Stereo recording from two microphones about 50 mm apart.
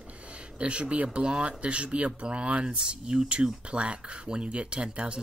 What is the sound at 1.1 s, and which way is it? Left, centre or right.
Speech, right.